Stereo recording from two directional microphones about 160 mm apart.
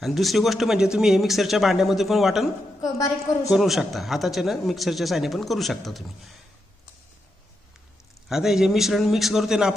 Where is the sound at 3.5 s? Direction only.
Centre (ahead or behind).